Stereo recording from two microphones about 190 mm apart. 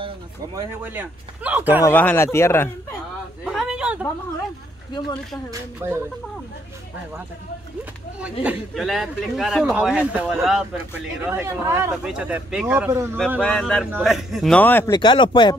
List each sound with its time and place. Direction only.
0.6 s a man's voice: 10° right (ahead or behind)
1.9 s a man's voice: 10° left (ahead or behind)
3.4 s a sound: 5° right (ahead or behind)
5.5 s a man's voice: 15° right (ahead or behind)
8.2 s a man's voice: 5° right (ahead or behind)
11.2 s a man's voice: 10° right (ahead or behind)
13.4 s a man's voice: 5° left (ahead or behind)
14.9 s speech: 25° left (ahead or behind)